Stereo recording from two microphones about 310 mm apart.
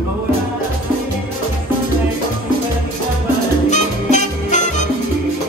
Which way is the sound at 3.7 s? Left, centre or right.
Left.